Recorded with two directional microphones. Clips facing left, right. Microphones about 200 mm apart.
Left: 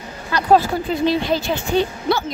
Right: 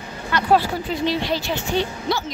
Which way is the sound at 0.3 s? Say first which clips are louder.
Left 3 dB; 35° left (ahead or behind).